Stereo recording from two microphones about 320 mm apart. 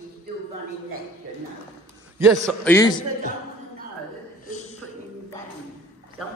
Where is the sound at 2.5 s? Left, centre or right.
Centre.